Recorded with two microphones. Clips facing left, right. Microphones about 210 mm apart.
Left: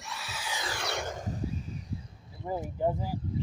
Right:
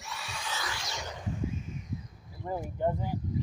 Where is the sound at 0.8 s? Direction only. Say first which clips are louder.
Left 6 dB; 60° left (ahead or behind); by 2.4 s 30° left (ahead or behind).